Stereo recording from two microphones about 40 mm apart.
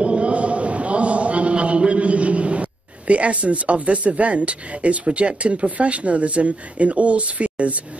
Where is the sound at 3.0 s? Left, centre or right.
Right.